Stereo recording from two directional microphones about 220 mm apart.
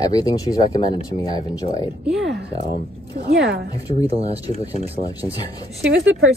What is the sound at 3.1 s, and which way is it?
Speech, 35° right (ahead or behind).